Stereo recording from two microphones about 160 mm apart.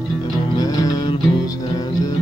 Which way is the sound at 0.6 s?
25° left (ahead or behind).